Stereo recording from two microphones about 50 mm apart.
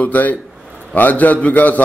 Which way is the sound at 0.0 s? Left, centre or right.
Left.